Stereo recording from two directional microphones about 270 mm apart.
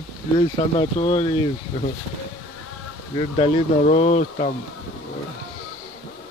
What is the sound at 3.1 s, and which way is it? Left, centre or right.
Speech, left.